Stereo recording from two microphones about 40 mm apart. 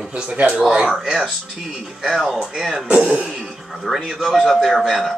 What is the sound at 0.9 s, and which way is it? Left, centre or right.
Speech, centre.